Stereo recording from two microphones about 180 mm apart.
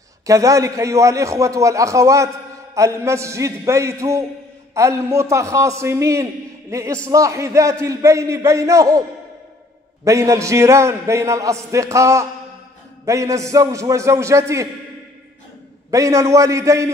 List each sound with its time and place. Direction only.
0.3 s a man's voice: 20° right (ahead or behind)
10.0 s a man's voice: 15° right (ahead or behind)
15.9 s a man's voice: 15° right (ahead or behind)